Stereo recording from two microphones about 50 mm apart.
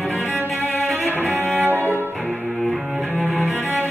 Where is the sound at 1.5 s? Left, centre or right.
Right.